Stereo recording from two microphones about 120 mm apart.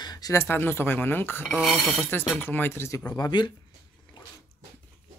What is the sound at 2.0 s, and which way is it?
Speech, 15° left (ahead or behind).